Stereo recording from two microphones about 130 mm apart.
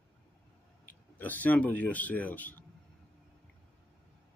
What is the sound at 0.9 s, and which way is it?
Speech, 15° left (ahead or behind).